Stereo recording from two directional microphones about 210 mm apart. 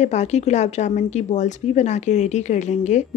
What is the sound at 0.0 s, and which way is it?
A woman's voice, 35° left (ahead or behind).